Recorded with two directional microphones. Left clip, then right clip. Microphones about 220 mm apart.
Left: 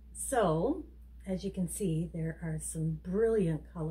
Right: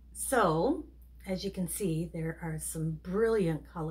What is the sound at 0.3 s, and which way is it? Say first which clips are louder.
A woman's voice: right 2 dB; 5° left (ahead or behind).